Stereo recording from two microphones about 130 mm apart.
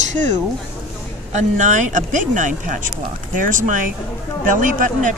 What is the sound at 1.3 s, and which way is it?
Speech, 70° right (ahead or behind).